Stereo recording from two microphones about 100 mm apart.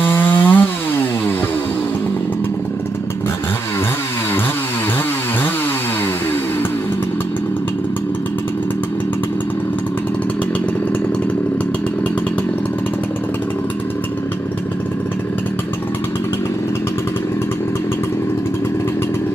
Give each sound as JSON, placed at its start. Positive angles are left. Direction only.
{"t": 0.0, "sound": "chainsaw", "side_deg": 20}